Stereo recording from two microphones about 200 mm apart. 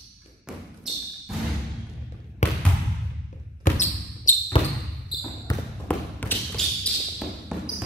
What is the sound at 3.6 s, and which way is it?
Basketball bounce, 40° left (ahead or behind).